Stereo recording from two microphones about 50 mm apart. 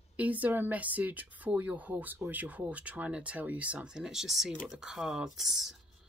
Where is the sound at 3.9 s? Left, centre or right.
Centre.